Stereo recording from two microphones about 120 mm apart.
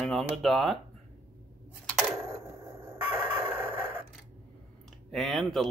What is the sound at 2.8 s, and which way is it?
Chicken, 20° right (ahead or behind).